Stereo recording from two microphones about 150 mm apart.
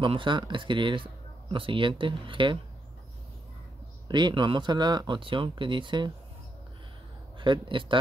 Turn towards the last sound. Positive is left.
turn(degrees=-35)  # may be behind; listen again after turning